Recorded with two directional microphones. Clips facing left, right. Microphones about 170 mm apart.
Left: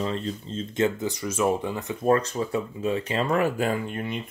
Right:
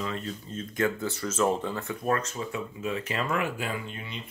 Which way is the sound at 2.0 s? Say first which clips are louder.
Left 8 dB; 30° left (ahead or behind).